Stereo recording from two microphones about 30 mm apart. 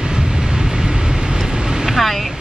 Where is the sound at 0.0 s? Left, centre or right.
Right.